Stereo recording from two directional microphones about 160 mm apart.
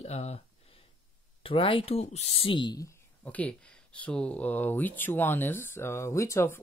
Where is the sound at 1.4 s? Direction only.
35° left (ahead or behind).